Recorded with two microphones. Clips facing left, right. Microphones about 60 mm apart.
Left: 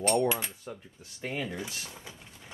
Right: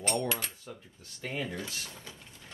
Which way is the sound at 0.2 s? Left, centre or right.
Centre.